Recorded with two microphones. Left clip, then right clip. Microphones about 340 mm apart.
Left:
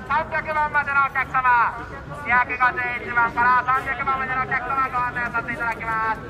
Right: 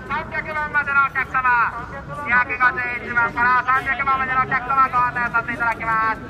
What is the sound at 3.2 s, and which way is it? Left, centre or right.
Speech, centre.